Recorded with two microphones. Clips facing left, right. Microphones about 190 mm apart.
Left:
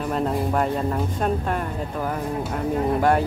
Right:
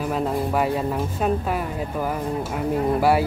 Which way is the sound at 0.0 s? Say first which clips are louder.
Even; 5° right (ahead or behind).